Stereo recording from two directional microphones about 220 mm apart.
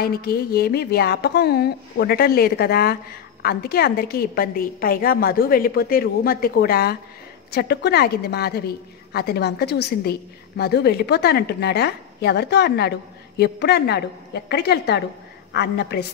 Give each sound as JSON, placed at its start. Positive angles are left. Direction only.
{"t": 0.0, "sound": "a woman's voice", "side_deg": 45}